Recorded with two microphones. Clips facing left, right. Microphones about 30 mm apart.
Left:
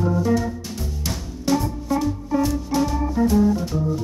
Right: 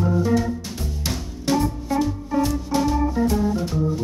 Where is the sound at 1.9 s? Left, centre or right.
Centre.